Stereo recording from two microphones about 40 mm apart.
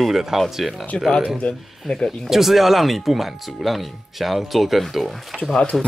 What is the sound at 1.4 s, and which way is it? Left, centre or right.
Speech, left.